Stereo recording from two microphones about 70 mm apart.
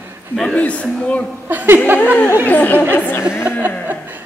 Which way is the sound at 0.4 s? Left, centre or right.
Centre.